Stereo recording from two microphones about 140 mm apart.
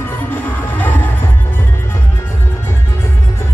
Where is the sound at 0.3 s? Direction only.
15° left (ahead or behind).